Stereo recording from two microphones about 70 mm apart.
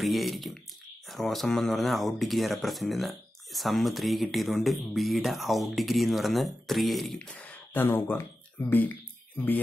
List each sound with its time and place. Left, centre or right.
0.0 s speech: centre
7.2 s speech: left